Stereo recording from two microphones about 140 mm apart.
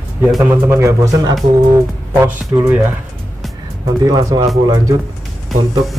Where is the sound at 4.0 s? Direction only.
30° right (ahead or behind).